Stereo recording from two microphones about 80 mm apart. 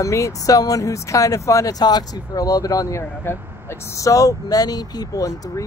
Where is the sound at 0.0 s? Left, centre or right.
Left.